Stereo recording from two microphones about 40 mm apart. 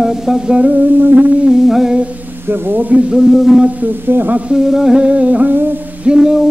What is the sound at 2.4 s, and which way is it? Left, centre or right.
Speech, right.